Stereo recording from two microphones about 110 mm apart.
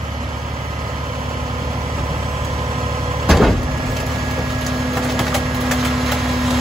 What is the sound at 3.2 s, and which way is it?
Vehicle, centre (ahead or behind).